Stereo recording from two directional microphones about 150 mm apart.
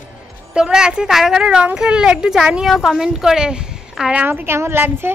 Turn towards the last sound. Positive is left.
turn(degrees=-15)  # may be behind; listen again after turning